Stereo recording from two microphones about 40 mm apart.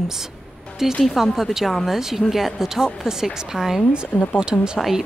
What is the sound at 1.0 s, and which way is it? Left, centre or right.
A woman's voice, centre.